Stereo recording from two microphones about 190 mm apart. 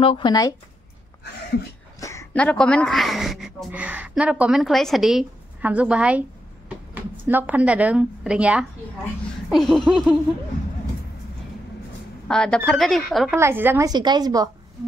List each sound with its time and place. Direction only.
0.0 s speech: 25° left (ahead or behind)
2.0 s a woman's voice: 15° left (ahead or behind); by 10.1 s centre (ahead or behind)
12.3 s a woman's voice: 5° left (ahead or behind)
13.3 s a woman's voice: 10° right (ahead or behind)